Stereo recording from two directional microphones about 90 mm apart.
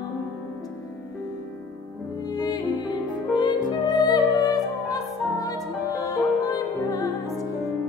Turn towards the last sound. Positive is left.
turn(degrees=40)  # may be behind; listen again after turning